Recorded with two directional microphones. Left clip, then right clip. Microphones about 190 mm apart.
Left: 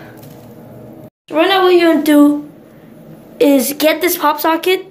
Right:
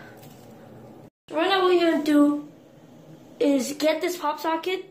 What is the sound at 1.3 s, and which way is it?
Speech, 10° left (ahead or behind).